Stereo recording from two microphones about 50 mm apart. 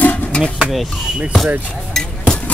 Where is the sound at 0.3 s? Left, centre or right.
Left.